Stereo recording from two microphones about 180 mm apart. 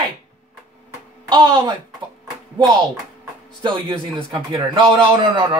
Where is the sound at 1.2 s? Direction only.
20° right (ahead or behind).